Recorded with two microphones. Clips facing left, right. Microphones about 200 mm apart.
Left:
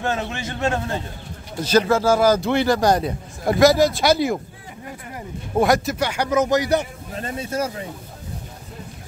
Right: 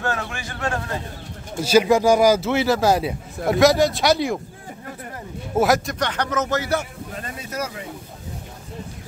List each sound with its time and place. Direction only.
0.0 s a man's voice: 20° left (ahead or behind)
1.6 s a man's voice: 10° right (ahead or behind)
5.6 s speech: centre (ahead or behind); by 6.9 s 15° left (ahead or behind)
7.2 s a man's voice: 30° left (ahead or behind)